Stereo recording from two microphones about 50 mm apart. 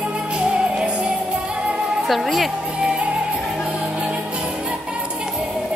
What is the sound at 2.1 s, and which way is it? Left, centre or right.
Speech, centre.